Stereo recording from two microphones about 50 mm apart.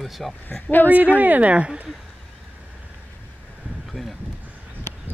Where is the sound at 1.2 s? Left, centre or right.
Right.